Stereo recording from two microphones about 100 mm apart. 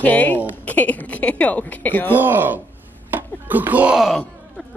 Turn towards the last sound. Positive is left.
turn(degrees=0)  # may be behind; listen again after turning